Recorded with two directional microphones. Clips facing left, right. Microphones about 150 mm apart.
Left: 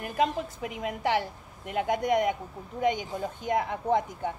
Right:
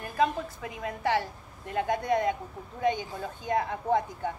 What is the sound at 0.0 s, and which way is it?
Speech, 20° left (ahead or behind).